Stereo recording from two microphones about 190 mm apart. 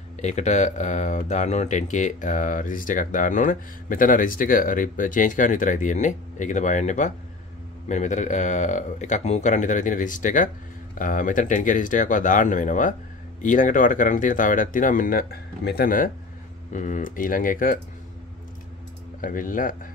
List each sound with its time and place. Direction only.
0.2 s speech: 40° left (ahead or behind)
19.2 s speech: 45° left (ahead or behind)